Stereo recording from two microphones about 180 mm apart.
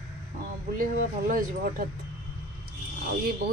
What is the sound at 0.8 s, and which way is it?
Speech, 50° right (ahead or behind).